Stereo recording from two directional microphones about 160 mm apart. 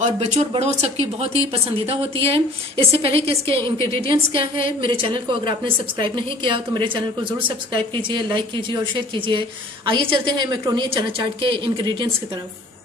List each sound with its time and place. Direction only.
0.0 s a woman's voice: 45° right (ahead or behind)